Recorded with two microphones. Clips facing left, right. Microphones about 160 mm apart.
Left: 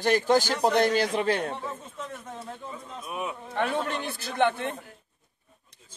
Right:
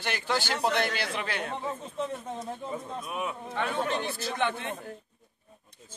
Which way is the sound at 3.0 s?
Centre (ahead or behind).